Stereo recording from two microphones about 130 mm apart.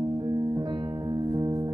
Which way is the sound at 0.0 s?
30° right (ahead or behind).